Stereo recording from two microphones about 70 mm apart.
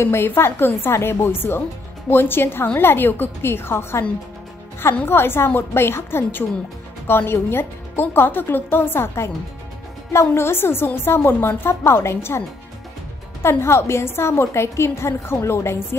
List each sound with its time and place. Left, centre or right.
0.0 s a woman's voice: left
5.0 s a woman's voice: left